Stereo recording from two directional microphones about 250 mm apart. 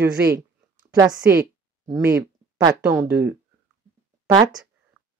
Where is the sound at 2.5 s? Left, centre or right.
Centre.